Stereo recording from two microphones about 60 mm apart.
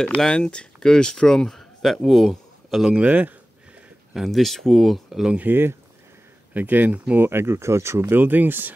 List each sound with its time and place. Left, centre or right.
0.3 s speech: centre
2.9 s speech: right
4.1 s speech: centre
5.4 s speech: right
7.2 s speech: right